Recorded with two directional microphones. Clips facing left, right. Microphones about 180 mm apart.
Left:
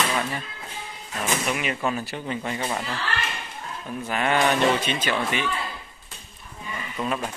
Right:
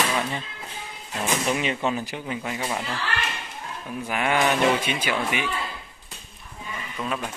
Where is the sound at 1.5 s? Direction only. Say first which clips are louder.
Right 2 dB; 30° right (ahead or behind).